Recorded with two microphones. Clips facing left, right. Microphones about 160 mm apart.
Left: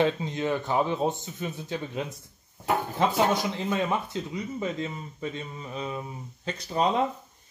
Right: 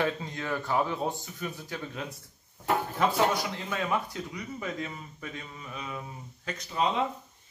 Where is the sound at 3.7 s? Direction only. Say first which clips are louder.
Left 2 dB; 25° left (ahead or behind).